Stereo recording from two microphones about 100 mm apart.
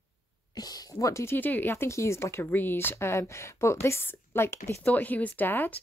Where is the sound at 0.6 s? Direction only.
40° left (ahead or behind); by 5.8 s 20° left (ahead or behind).